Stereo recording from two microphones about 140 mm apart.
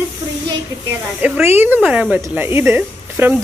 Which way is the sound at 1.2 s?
15° right (ahead or behind).